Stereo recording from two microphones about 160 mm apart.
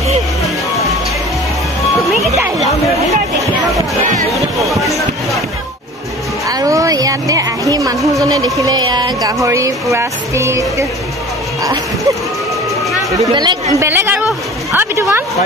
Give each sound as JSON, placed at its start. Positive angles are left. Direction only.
{"t": 6.5, "sound": "a sound", "side_deg": -20}
{"t": 8.5, "sound": "speech", "side_deg": -25}
{"t": 13.3, "sound": "speech", "side_deg": -25}
{"t": 13.8, "sound": "a woman's voice", "side_deg": -15}